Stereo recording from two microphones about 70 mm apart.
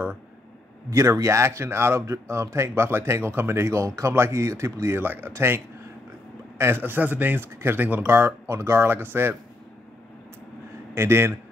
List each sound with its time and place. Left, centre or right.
0.8 s speech: right
6.6 s a man's voice: right
11.0 s speech: right